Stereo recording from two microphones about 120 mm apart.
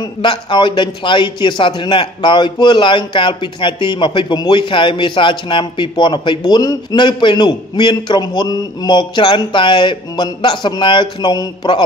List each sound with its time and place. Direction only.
0.0 s a man's voice: 40° left (ahead or behind)